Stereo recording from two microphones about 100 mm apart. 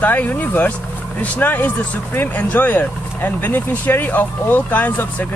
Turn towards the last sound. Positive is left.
turn(degrees=15)  # may be behind; listen again after turning